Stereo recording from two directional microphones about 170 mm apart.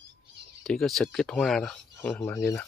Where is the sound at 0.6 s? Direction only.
Centre (ahead or behind).